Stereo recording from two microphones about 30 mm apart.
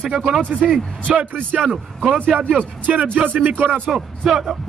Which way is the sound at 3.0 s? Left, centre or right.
Right.